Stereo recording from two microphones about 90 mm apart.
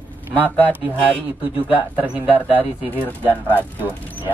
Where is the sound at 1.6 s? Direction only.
15° right (ahead or behind).